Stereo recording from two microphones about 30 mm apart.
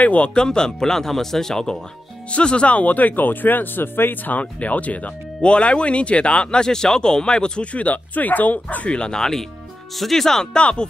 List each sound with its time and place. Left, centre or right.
0.0 s speech: left
0.4 s speech: left
2.3 s speech: left
4.1 s speech: left
5.4 s speech: left
6.6 s speech: left
7.7 s speech: left
8.8 s speech: left
9.1 s speech: centre
10.6 s speech: left